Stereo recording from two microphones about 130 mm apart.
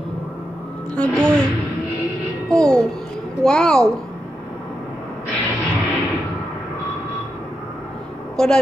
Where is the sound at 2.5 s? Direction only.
5° left (ahead or behind).